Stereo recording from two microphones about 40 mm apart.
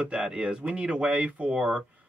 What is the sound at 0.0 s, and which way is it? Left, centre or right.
Speech, right.